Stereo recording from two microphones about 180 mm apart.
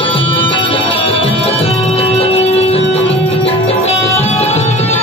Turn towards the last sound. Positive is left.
turn(degrees=40)  # may be behind; listen again after turning